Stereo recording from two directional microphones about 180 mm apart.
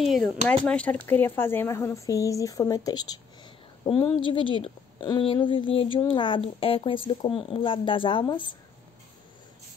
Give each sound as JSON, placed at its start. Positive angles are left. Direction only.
{"t": 0.0, "sound": "speech", "side_deg": 0}